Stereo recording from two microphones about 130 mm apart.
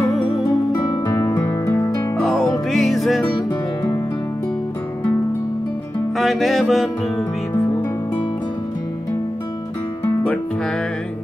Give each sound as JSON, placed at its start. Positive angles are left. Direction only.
{"t": 0.1, "sound": "music", "side_deg": 0}
{"t": 0.7, "sound": "music", "side_deg": 30}
{"t": 2.1, "sound": "music", "side_deg": 0}
{"t": 6.1, "sound": "music", "side_deg": 0}
{"t": 10.0, "sound": "music", "side_deg": 10}